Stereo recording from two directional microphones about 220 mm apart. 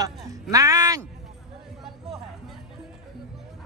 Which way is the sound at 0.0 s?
15° right (ahead or behind).